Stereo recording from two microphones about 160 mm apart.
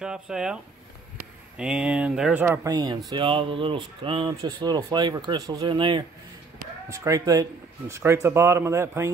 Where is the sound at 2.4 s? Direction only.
25° right (ahead or behind).